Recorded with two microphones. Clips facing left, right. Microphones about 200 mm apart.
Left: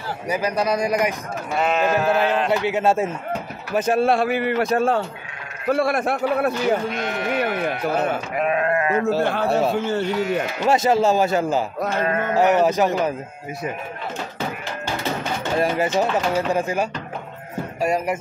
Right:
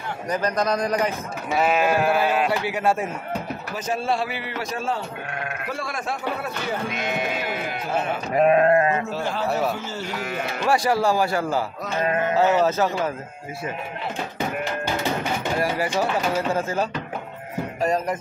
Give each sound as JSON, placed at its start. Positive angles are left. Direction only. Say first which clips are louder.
{"t": 0.3, "sound": "speech", "louder": "left 1 dB", "side_deg": 10}
{"t": 1.5, "sound": "sheep", "louder": "even", "side_deg": -5}
{"t": 2.5, "sound": "a man's voice", "louder": "left 4 dB", "side_deg": 25}
{"t": 3.7, "sound": "a man's voice", "louder": "left 7 dB", "side_deg": 55}
{"t": 8.4, "sound": "speech", "louder": "right 6 dB", "side_deg": -35}
{"t": 9.2, "sound": "a man's voice", "louder": "left 5 dB", "side_deg": 60}
{"t": 9.5, "sound": "a man's voice", "louder": "left 2 dB", "side_deg": 25}
{"t": 9.8, "sound": "a man's voice", "louder": "left 9 dB", "side_deg": 60}
{"t": 10.6, "sound": "a man's voice", "louder": "left 2 dB", "side_deg": 20}
{"t": 11.8, "sound": "sheep", "louder": "left 1 dB", "side_deg": 55}
{"t": 12.4, "sound": "speech", "louder": "left 3 dB", "side_deg": 15}
{"t": 15.6, "sound": "speech", "louder": "left 5 dB", "side_deg": 20}